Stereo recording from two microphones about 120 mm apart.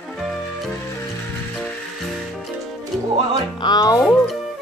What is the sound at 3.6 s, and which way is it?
Speech, 35° left (ahead or behind).